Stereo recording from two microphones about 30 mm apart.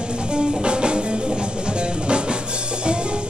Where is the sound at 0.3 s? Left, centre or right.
Right.